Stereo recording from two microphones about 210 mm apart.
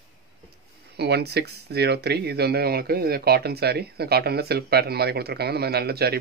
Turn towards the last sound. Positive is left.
turn(degrees=-50)  # may be behind; listen again after turning